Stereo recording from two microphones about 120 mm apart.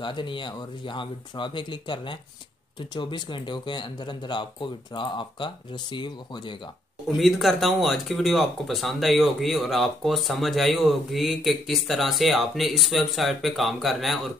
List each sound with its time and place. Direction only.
0.0 s speech: 40° left (ahead or behind)
7.1 s speech: centre (ahead or behind)